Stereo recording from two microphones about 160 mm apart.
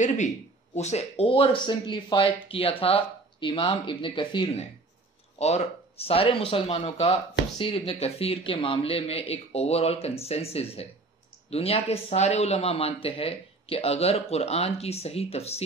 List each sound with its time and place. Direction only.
0.7 s speech: 45° left (ahead or behind)
5.4 s speech: 40° left (ahead or behind)